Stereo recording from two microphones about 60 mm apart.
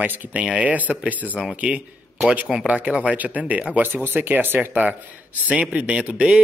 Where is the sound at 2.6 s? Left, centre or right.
Centre.